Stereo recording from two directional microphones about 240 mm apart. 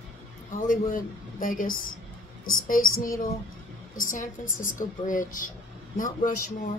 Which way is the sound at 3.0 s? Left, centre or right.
Left.